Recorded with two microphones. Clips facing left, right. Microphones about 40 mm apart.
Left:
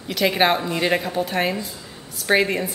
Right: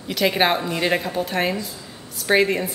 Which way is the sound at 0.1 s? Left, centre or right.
Centre.